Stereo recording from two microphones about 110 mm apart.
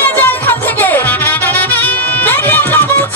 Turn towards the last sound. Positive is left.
turn(degrees=20)  # may be behind; listen again after turning